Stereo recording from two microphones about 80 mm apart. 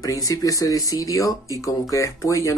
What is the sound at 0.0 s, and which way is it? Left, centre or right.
Speech, left.